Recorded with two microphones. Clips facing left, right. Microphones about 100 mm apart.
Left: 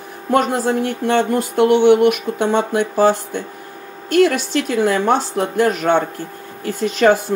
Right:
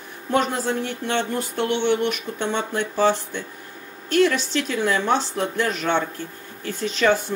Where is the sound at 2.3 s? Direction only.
45° left (ahead or behind).